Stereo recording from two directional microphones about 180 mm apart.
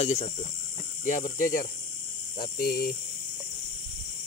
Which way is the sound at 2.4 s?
55° left (ahead or behind).